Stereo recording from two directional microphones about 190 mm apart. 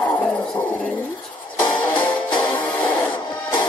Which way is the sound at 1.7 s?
25° left (ahead or behind).